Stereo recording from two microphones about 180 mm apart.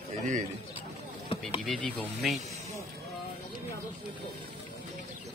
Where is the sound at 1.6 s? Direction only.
5° left (ahead or behind).